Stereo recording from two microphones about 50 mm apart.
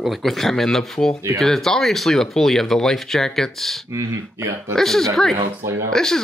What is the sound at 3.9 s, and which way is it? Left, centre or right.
Speech, right.